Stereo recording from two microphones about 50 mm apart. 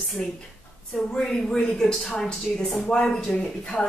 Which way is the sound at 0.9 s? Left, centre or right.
Centre.